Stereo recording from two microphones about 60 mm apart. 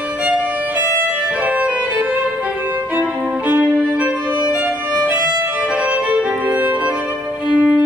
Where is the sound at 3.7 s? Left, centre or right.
Centre.